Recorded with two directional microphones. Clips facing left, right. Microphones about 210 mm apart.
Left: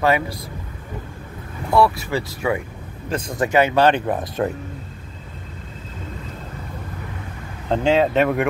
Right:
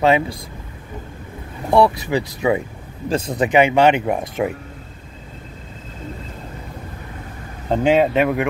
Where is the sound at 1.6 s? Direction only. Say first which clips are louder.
Right 2 dB; 25° right (ahead or behind).